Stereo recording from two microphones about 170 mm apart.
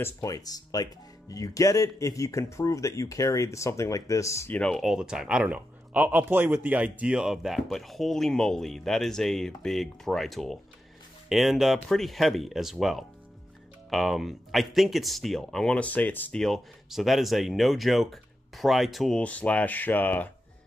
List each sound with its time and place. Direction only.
0.0 s speech: 20° left (ahead or behind)
4.6 s speech: 5° left (ahead or behind)